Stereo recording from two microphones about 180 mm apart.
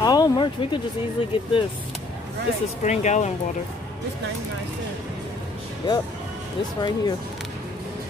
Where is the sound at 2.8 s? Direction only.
40° left (ahead or behind).